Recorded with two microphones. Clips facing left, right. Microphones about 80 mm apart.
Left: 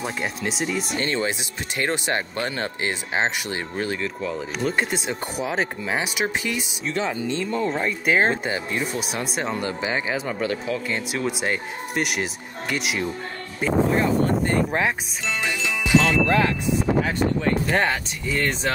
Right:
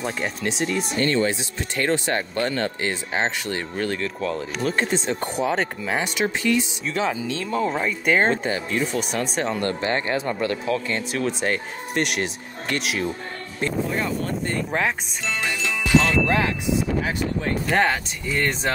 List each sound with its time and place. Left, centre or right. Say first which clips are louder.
0.0 s speech: right 1 dB; centre
1.0 s speech: right 3 dB; centre
6.9 s speech: left 1 dB; centre
8.5 s speech: right 2 dB; centre
14.7 s speech: even; centre
15.4 s music: even; centre
16.3 s speech: left 2 dB; centre
17.6 s speech: right 5 dB; centre